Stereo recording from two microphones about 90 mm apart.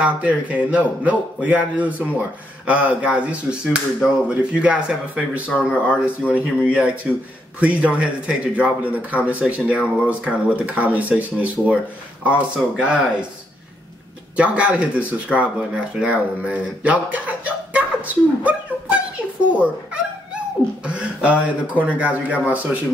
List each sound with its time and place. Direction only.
0.0 s a man's voice: 15° right (ahead or behind)
14.3 s a man's voice: 15° right (ahead or behind)